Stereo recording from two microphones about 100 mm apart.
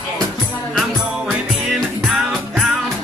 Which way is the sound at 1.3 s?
Centre (ahead or behind).